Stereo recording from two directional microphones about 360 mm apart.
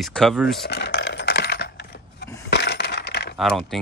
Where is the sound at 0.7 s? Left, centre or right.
Left.